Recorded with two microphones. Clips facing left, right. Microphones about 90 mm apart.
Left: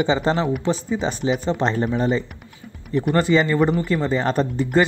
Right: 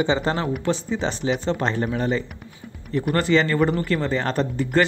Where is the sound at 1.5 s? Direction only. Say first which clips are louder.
Left 2 dB; 25° left (ahead or behind).